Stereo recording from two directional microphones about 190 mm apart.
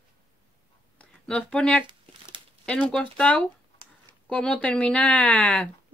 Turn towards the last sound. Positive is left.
turn(degrees=5)  # may be behind; listen again after turning